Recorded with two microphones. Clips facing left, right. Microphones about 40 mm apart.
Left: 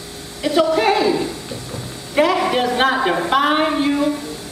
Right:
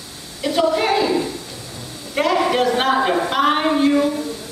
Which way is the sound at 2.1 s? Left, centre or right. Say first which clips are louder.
Left 1 dB; centre.